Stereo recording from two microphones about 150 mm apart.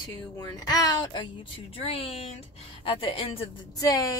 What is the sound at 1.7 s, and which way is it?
Speech, 40° left (ahead or behind).